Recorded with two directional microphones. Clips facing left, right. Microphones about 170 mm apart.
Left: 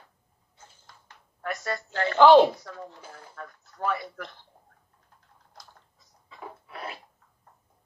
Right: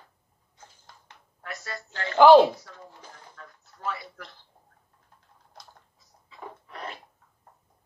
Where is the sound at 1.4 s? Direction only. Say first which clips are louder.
Left 7 dB; 55° left (ahead or behind).